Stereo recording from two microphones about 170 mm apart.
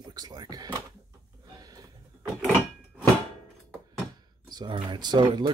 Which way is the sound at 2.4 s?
5° right (ahead or behind).